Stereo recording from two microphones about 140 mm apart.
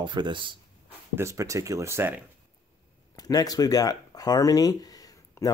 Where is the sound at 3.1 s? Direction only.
25° left (ahead or behind).